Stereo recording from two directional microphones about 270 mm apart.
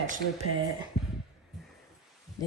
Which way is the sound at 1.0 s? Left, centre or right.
Centre.